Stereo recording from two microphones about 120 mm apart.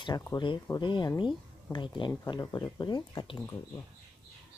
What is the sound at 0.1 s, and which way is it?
Speech, 35° left (ahead or behind).